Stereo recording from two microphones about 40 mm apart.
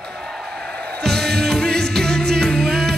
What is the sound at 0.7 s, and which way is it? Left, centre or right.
Music, left.